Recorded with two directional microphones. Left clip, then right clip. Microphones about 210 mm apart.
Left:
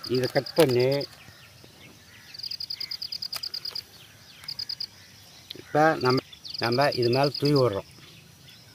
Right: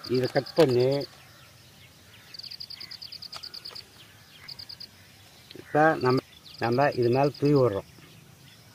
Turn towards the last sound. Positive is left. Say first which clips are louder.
# even
turn(degrees=-5)  # may be behind; listen again after turning